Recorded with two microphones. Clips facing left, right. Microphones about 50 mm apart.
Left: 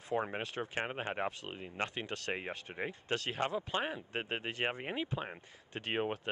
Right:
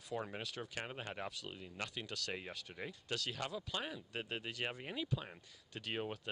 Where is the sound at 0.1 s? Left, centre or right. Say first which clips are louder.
Left 7 dB; left.